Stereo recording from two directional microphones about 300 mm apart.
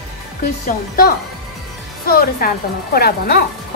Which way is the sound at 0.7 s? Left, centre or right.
Left.